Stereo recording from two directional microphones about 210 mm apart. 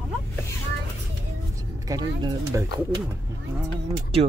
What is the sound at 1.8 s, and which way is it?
Speech, 15° right (ahead or behind).